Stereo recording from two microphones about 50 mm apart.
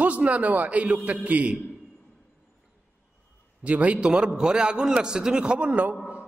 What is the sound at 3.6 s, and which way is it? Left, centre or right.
A man's voice, right.